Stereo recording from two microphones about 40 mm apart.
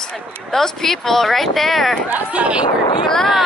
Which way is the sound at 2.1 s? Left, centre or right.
Right.